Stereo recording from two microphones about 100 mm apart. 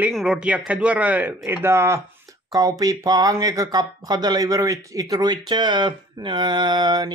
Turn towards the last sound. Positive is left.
turn(degrees=-45)  # may be behind; listen again after turning